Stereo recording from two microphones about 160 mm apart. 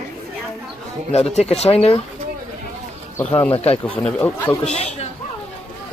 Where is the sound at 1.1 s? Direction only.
40° left (ahead or behind).